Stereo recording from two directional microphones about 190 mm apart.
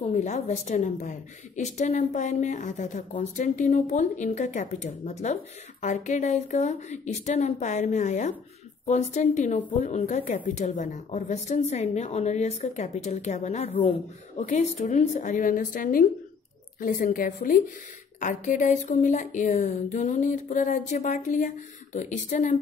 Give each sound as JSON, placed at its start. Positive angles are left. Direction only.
{"t": 0.0, "sound": "a woman's voice", "side_deg": 40}